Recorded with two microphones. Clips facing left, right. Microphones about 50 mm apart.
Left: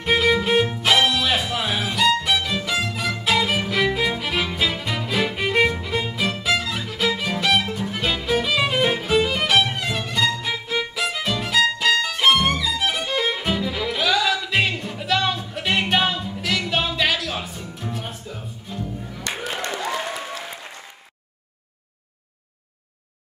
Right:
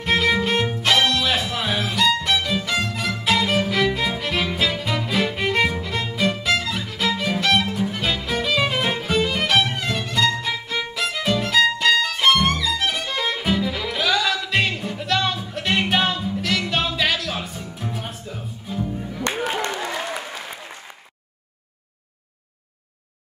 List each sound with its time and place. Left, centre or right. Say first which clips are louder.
0.0 s music: left 1 dB; centre
19.2 s music: right 4 dB; right